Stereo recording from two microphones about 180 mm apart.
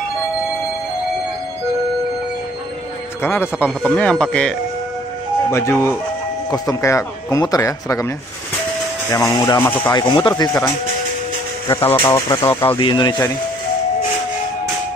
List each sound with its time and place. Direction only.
3.2 s speech: 10° left (ahead or behind)
5.5 s speech: 15° left (ahead or behind)
9.1 s speech: 20° left (ahead or behind)
11.7 s speech: 10° left (ahead or behind)
12.6 s speech: 30° left (ahead or behind)